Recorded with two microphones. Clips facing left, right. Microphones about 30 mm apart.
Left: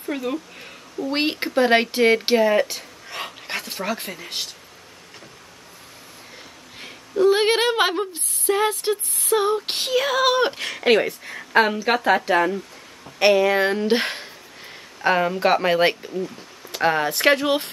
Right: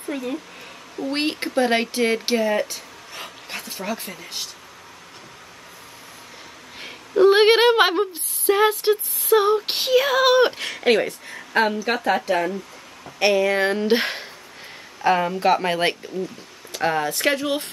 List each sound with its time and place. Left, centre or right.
0.1 s speech: centre; by 2.8 s left
3.1 s dog: left
7.2 s speech: right
7.5 s female singing: centre
10.6 s speech: centre; by 12.5 s left
13.2 s speech: centre
15.0 s speech: centre; by 17.6 s left